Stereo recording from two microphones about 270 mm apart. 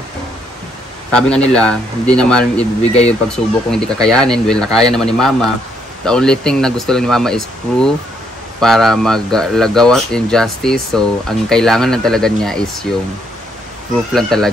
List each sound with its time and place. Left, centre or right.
1.1 s speech: centre
2.8 s speech: left
3.3 s speech: centre
14.1 s speech: centre